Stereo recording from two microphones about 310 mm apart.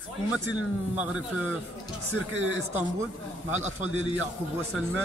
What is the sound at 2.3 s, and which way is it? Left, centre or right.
Speech, right.